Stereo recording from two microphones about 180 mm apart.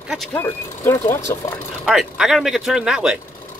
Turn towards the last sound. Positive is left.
turn(degrees=-5)  # may be behind; listen again after turning